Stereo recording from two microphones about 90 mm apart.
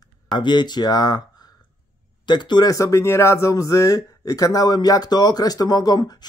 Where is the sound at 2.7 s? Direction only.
35° left (ahead or behind).